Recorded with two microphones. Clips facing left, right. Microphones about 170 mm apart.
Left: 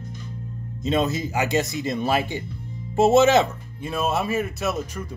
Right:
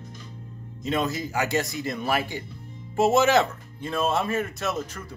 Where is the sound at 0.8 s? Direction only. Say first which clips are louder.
Left 4 dB; 25° left (ahead or behind).